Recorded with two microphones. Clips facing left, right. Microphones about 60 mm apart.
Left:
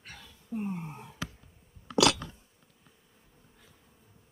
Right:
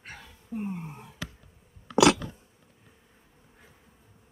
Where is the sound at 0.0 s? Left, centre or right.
Right.